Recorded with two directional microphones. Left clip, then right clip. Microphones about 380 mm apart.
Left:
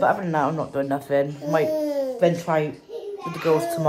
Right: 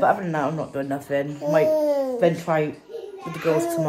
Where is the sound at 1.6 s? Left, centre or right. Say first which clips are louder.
Right 4 dB; centre.